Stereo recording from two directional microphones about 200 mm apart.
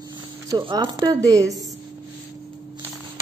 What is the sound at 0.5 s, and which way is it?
Speech, 20° right (ahead or behind).